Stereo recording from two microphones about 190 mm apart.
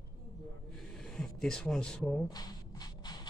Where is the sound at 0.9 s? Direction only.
5° left (ahead or behind).